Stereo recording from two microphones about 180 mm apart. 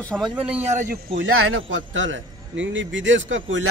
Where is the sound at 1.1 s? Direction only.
90° right.